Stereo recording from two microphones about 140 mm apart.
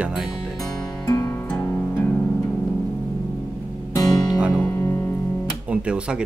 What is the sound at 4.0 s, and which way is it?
Music, 25° left (ahead or behind).